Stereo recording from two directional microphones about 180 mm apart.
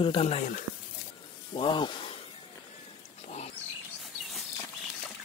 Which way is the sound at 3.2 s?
35° left (ahead or behind).